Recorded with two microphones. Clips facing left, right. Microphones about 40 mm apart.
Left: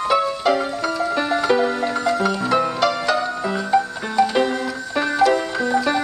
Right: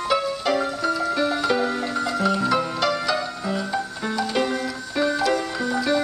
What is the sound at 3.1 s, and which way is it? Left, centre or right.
Music, left.